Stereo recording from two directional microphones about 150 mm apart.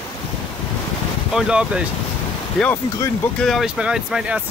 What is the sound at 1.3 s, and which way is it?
Speech, 5° right (ahead or behind).